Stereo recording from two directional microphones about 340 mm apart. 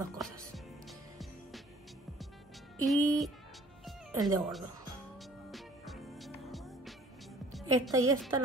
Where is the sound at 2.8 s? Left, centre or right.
Centre.